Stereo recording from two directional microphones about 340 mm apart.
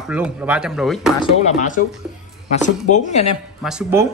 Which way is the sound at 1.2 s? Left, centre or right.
Left.